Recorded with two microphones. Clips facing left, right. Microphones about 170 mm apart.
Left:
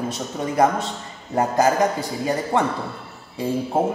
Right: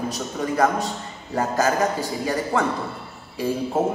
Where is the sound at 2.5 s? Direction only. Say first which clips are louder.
Left 2 dB; 20° left (ahead or behind).